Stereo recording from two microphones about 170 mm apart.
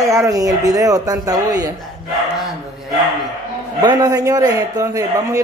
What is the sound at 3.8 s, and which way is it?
Speech, 25° right (ahead or behind).